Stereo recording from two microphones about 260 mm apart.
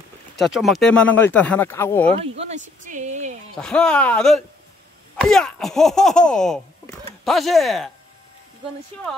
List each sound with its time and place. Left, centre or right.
0.4 s speech: centre
2.0 s speech: right
3.5 s speech: centre